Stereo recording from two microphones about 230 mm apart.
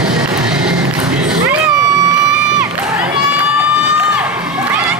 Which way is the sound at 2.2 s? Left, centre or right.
Centre.